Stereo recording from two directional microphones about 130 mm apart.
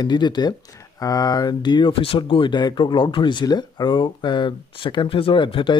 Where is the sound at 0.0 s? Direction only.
35° left (ahead or behind).